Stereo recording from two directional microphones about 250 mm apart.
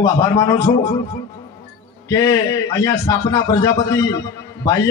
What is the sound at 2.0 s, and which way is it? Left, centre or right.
A man's voice, centre.